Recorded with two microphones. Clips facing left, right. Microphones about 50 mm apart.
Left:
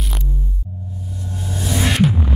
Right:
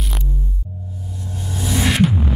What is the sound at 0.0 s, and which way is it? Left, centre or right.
Music, centre.